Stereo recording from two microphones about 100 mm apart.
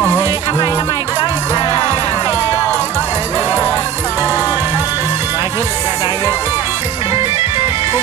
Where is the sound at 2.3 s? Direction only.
35° left (ahead or behind).